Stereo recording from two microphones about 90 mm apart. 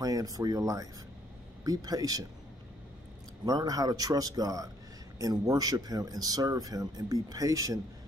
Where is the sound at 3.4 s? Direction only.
45° right (ahead or behind).